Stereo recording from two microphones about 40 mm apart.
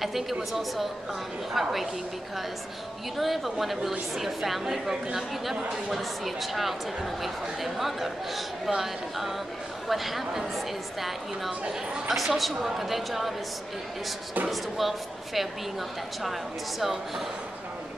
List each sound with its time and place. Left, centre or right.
0.0 s speech: centre
3.2 s a woman's voice: centre
14.5 s speech: centre